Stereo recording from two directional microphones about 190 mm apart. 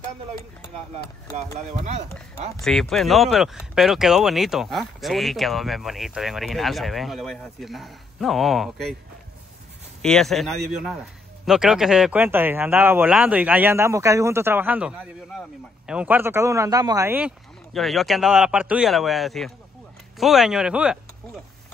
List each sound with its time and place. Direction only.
1.3 s speech: 35° right (ahead or behind)
2.6 s speech: centre (ahead or behind)
10.0 s a man's voice: centre (ahead or behind)
17.7 s speech: centre (ahead or behind)